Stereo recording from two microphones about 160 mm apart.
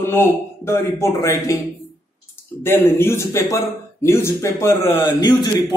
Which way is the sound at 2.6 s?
15° left (ahead or behind).